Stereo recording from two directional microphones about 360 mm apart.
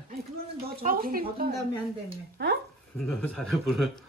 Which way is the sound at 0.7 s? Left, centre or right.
Right.